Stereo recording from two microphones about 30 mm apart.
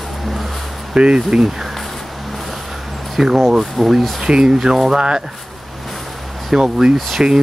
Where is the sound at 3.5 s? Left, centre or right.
Centre.